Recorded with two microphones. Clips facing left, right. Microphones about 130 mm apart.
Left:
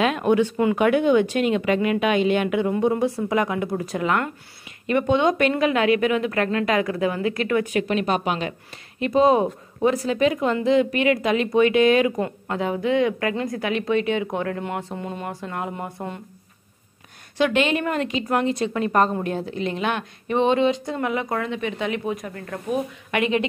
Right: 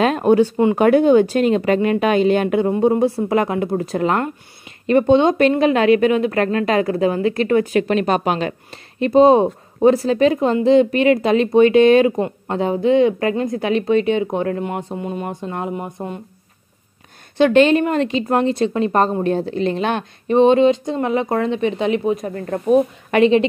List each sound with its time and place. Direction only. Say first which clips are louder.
0.0 s a woman's voice: right 5 dB; 35° right (ahead or behind)
8.0 s a woman's voice: right 5 dB; 45° right (ahead or behind)
9.0 s speech: right 6 dB; 30° right (ahead or behind); by 16.2 s 15° right (ahead or behind)
17.4 s a woman's voice: right 8 dB; 35° right (ahead or behind)